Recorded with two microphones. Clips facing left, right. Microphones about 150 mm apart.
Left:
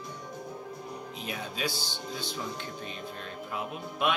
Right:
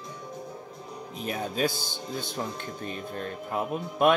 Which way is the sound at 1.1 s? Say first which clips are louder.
Right 9 dB; 45° right (ahead or behind).